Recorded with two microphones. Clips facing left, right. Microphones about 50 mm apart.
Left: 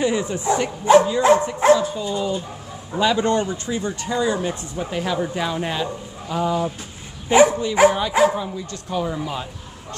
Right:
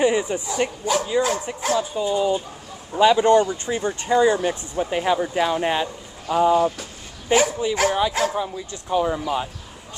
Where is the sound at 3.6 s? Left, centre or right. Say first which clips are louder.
Right 2 dB; right.